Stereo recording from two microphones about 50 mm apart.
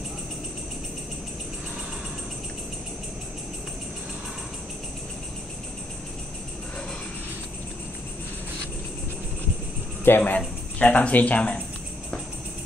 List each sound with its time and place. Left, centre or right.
10.0 s speech: left
10.8 s speech: left